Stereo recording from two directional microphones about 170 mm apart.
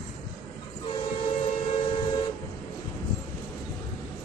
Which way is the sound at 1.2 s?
30° left (ahead or behind).